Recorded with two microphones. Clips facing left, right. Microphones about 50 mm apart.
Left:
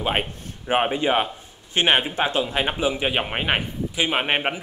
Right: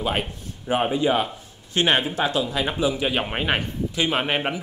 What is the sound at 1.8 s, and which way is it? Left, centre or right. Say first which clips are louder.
Speech: left 1 dB; left.